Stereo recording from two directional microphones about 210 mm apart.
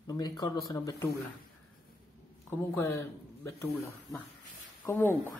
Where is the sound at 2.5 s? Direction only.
10° left (ahead or behind).